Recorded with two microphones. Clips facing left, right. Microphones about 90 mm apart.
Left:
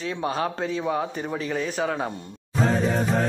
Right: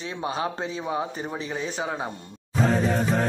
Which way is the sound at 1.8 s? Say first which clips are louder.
Left 4 dB; 15° right (ahead or behind).